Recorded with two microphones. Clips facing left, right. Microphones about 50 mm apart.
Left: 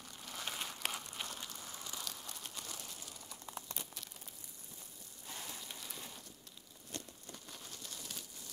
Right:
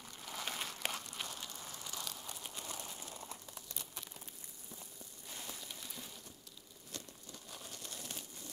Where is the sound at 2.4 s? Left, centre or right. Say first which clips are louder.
Right 3 dB; centre.